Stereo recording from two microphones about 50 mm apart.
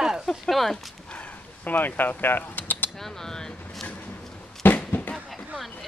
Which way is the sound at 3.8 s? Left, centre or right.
Left.